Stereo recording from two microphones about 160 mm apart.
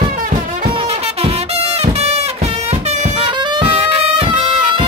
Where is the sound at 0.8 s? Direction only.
40° right (ahead or behind).